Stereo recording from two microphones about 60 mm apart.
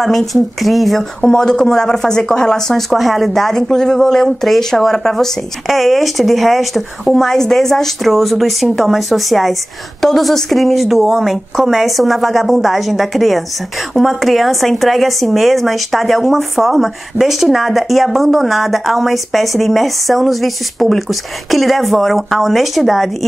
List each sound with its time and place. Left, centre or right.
0.0 s speech: centre
1.2 s speech: centre
2.9 s speech: centre